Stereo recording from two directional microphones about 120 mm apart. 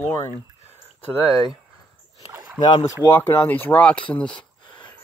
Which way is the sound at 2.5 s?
35° left (ahead or behind).